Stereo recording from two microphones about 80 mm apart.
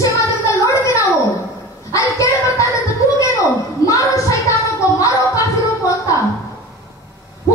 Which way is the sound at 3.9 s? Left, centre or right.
Left.